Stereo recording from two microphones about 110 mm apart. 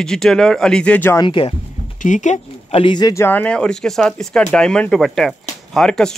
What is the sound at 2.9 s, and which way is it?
Speech, 40° left (ahead or behind).